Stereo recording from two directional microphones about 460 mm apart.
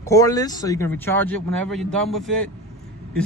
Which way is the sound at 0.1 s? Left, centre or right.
Centre.